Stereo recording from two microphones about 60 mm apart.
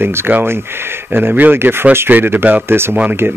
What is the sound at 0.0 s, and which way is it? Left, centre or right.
Speech, right.